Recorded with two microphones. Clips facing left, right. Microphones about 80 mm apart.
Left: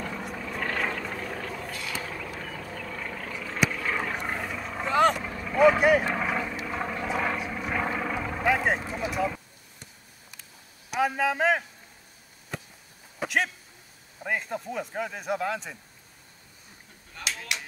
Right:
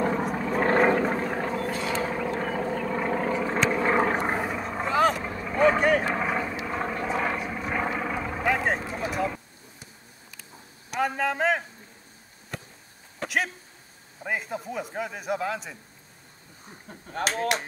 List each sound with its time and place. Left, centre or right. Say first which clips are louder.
0.0 s a sound: right 9 dB; right
2.7 s vehicle: right 10 dB; right
4.8 s vehicle: left 1 dB; centre
5.2 s vehicle: right 2 dB; centre
5.6 s vehicle: left 2 dB; centre
6.0 s vehicle: right 1 dB; centre
10.9 s a sound: left 1 dB; centre
14.2 s speech: even; centre
17.1 s speech: right 9 dB; right